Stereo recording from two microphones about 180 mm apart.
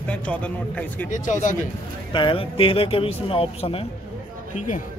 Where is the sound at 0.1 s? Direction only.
5° left (ahead or behind).